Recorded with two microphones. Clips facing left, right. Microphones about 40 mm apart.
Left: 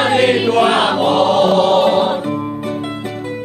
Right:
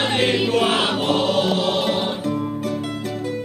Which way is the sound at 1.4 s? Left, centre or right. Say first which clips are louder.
Left 9 dB; left.